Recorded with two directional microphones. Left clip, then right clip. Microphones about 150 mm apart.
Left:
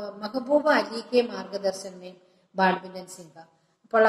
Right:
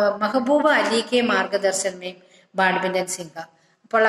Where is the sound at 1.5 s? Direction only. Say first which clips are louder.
Right 8 dB; 50° right (ahead or behind).